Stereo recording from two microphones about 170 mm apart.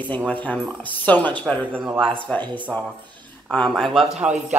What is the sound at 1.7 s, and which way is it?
Speech, 10° right (ahead or behind).